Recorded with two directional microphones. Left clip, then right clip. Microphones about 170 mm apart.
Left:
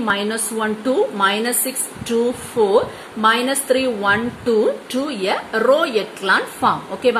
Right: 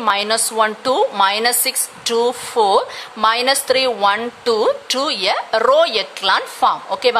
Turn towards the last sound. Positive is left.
turn(degrees=-45)  # may be behind; listen again after turning